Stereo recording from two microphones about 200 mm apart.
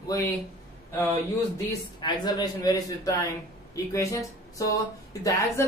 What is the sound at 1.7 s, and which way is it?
A man's voice, 20° left (ahead or behind).